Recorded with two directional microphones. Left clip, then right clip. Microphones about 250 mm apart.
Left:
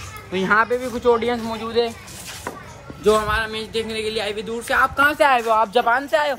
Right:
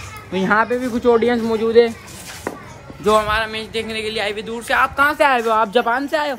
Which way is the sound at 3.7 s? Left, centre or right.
Centre.